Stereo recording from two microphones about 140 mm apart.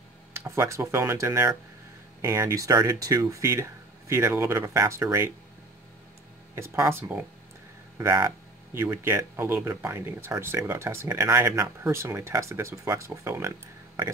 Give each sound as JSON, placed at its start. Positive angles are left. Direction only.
{"t": 0.3, "sound": "speech", "side_deg": -20}
{"t": 6.5, "sound": "speech", "side_deg": -20}